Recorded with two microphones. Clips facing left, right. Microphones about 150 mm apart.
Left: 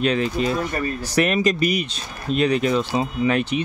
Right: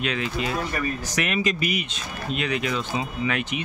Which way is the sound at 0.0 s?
40° left (ahead or behind).